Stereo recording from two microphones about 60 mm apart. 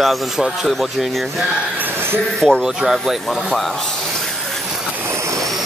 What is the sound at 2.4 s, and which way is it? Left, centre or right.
Speech, centre.